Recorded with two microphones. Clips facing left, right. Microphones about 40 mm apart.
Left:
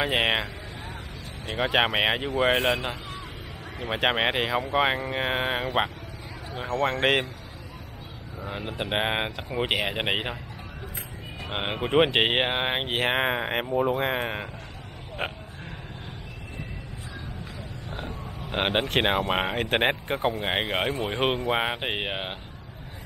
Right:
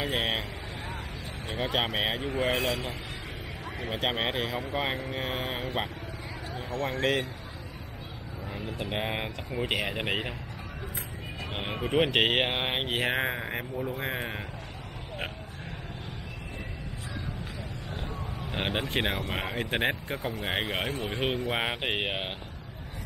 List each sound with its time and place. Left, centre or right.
0.0 s vehicle: left
1.5 s speech: left
2.0 s speech: left
3.9 s speech: left
8.5 s speech: left
11.5 s speech: left; by 12.9 s centre
12.9 s speech: left
17.8 s vehicle: left
18.9 s speech: left
20.4 s speech: left
21.5 s speech: centre